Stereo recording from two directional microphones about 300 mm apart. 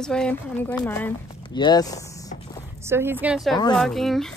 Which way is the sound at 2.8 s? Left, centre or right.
Centre.